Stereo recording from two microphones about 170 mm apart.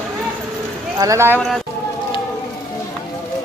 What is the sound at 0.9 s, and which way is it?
Speech, 20° right (ahead or behind).